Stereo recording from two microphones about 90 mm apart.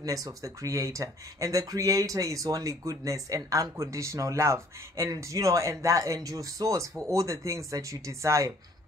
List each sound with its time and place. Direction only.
0.0 s speech: 40° right (ahead or behind)